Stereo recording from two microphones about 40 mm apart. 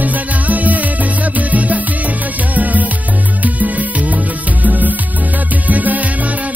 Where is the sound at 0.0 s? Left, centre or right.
Right.